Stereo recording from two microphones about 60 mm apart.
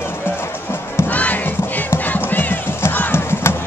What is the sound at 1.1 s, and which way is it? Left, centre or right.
Crowd, left.